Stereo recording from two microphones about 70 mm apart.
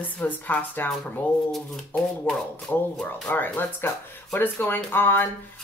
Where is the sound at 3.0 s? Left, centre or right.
Left.